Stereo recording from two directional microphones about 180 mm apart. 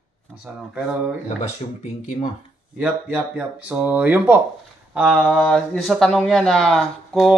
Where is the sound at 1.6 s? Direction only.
35° left (ahead or behind).